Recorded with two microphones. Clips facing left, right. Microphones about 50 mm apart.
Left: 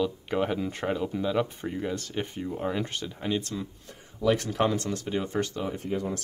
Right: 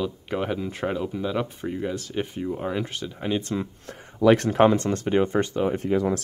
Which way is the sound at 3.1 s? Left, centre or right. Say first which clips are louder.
Right 3 dB; centre.